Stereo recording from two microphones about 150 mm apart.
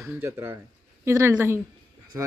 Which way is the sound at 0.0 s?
15° right (ahead or behind).